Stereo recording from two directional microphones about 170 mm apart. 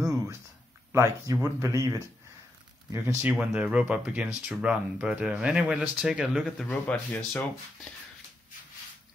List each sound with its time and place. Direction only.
0.9 s speech: 15° right (ahead or behind)
6.7 s speech: 10° left (ahead or behind)